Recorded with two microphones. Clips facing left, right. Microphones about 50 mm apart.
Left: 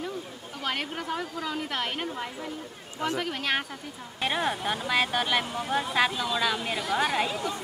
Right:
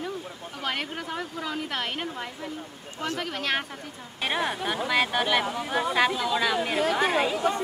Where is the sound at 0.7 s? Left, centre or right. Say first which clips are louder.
Even; centre.